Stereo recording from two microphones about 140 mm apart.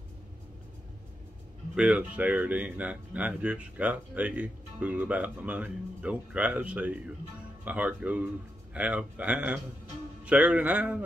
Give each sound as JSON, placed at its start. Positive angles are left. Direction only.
{"t": 1.8, "sound": "speech", "side_deg": -10}